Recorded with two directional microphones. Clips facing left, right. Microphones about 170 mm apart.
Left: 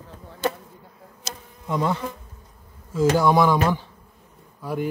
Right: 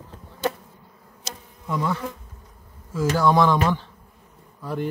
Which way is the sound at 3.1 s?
10° left (ahead or behind).